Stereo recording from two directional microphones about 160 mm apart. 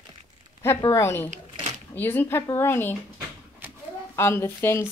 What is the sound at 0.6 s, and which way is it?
Speech, 20° left (ahead or behind).